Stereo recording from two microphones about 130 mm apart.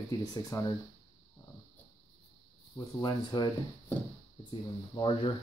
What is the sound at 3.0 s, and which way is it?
Speech, 35° left (ahead or behind).